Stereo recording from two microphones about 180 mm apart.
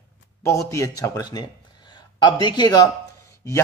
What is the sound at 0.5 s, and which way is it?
A man's voice, 15° left (ahead or behind).